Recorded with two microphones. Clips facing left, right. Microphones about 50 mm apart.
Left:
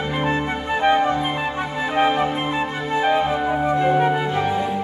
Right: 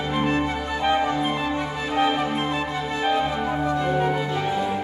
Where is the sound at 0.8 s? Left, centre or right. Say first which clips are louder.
Left 4 dB; left.